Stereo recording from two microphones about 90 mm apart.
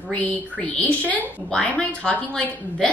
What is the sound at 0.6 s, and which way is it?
Speech, 15° left (ahead or behind).